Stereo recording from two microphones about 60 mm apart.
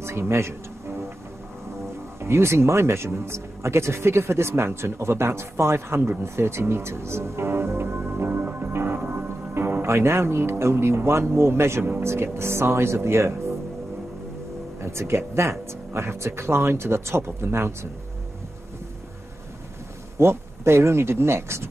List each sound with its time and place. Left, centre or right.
0.0 s music: right
2.1 s speech: right
6.2 s music: right
9.5 s speech: right
14.8 s speech: right
20.2 s speech: right